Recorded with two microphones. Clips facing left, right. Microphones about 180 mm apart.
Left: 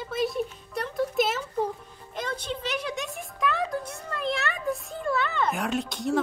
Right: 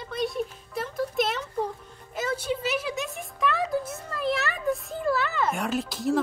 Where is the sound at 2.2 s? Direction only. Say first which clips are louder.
Right 4 dB; 5° right (ahead or behind).